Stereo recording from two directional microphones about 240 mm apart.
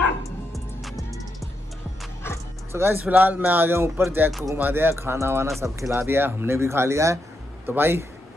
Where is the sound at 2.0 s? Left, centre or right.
Centre.